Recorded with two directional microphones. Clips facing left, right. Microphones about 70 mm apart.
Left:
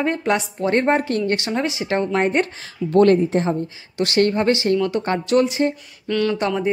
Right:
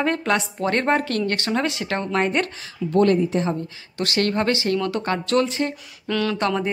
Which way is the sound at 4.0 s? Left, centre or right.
Left.